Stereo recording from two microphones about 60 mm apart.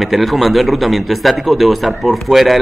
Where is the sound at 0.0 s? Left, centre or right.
Centre.